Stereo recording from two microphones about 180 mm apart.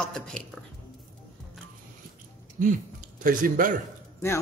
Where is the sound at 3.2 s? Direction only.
50° right (ahead or behind).